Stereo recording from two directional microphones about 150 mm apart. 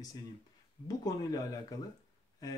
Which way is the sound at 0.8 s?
25° left (ahead or behind).